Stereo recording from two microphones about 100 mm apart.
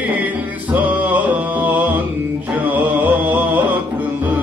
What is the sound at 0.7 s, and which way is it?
Music, 15° right (ahead or behind).